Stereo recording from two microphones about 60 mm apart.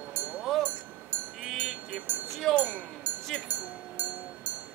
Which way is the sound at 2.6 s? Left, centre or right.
Right.